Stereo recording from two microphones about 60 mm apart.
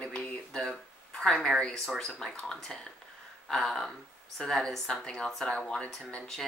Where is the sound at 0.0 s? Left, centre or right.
Centre.